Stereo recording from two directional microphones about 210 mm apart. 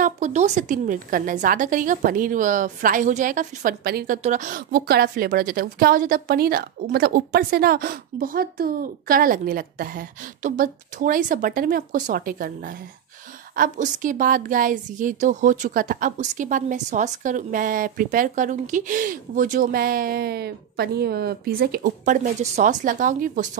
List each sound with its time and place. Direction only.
0.0 s a woman's voice: 35° right (ahead or behind)